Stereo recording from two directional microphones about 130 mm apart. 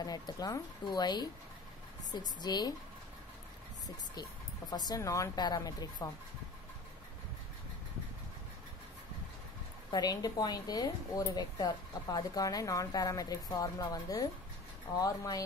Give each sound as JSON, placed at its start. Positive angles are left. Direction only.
{"t": 0.0, "sound": "speech", "side_deg": 30}
{"t": 3.8, "sound": "speech", "side_deg": 30}
{"t": 9.8, "sound": "speech", "side_deg": 30}